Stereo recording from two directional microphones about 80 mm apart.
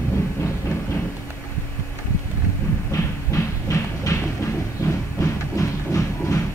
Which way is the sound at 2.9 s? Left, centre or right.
Left.